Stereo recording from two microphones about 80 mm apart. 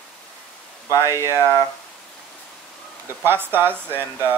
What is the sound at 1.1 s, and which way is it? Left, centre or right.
Speech, left.